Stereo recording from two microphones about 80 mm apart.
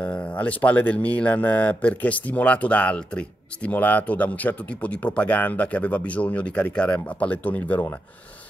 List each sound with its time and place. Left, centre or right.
0.0 s speech: centre